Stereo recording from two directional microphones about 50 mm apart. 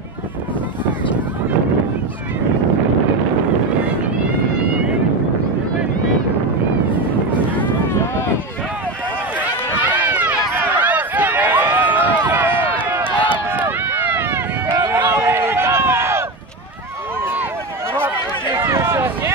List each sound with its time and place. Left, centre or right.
10.0 s run: right
18.6 s run: right